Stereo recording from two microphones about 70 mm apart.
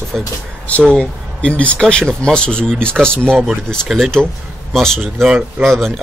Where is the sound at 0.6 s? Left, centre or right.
Centre.